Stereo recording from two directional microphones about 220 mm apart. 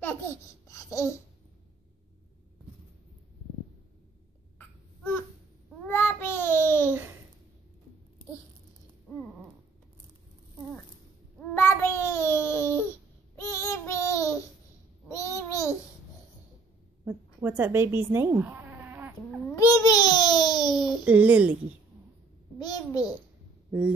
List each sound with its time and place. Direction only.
0.7 s babbling: 15° left (ahead or behind)
4.6 s cough: 10° left (ahead or behind)
5.9 s child singing: 10° left (ahead or behind)
11.3 s a sound: 10° left (ahead or behind)
13.4 s child singing: 10° left (ahead or behind)
15.0 s babbling: 15° left (ahead or behind)
17.0 s insect: 10° right (ahead or behind)
19.5 s babbling: 15° left (ahead or behind)
21.0 s a woman's voice: 5° right (ahead or behind)
22.6 s babbling: 20° left (ahead or behind)